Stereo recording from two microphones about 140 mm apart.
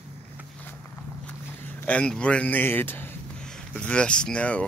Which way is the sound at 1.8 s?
10° left (ahead or behind).